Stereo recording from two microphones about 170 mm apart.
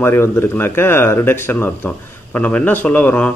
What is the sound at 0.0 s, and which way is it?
Speech, 15° left (ahead or behind).